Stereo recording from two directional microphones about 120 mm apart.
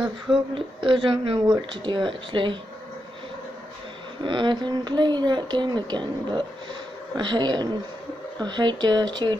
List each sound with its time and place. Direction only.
0.6 s speech: 45° right (ahead or behind)
4.2 s speech: 40° right (ahead or behind)